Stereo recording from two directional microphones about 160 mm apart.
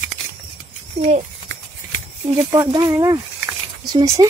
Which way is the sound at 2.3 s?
25° right (ahead or behind).